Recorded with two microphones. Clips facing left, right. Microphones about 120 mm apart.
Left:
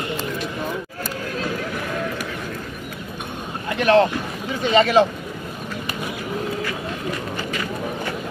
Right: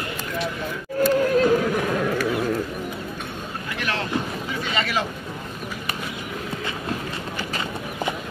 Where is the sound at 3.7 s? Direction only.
30° left (ahead or behind).